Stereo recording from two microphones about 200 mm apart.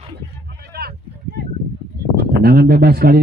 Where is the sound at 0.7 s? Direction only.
50° right (ahead or behind).